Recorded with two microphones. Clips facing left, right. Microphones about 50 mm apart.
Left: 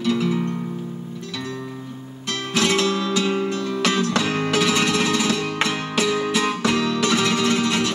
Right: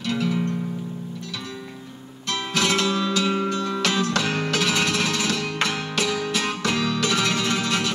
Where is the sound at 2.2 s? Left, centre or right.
Centre.